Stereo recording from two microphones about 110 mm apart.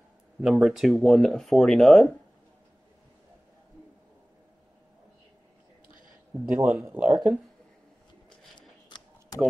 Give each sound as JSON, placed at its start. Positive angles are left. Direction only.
{"t": 0.4, "sound": "speech", "side_deg": -5}
{"t": 6.6, "sound": "speech", "side_deg": -15}
{"t": 7.1, "sound": "speech", "side_deg": 0}
{"t": 8.5, "sound": "a sound", "side_deg": 45}